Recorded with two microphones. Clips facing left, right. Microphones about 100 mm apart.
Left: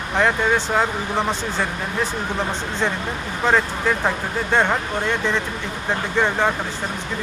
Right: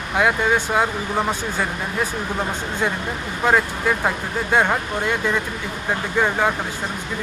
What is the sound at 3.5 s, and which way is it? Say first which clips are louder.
Speech: even; 10° right (ahead or behind).